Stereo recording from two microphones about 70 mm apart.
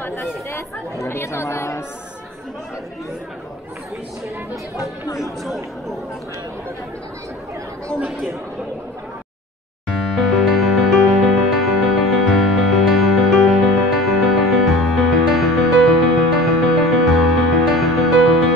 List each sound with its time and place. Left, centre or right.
0.0 s chatter: left
0.5 s speech: left
5.0 s speech: left
5.4 s speech: centre
8.1 s speech: centre
9.8 s music: centre